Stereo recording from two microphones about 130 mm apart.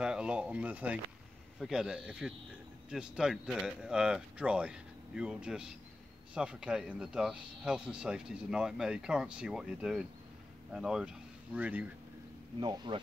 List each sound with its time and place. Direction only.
0.0 s speech: 5° right (ahead or behind)
12.5 s speech: 35° right (ahead or behind)